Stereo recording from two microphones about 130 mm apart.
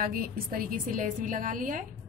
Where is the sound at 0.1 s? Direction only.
90° right.